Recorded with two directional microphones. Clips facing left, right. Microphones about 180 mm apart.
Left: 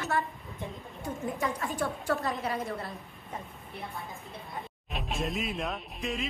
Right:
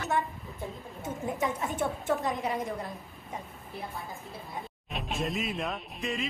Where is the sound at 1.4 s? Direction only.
20° right (ahead or behind).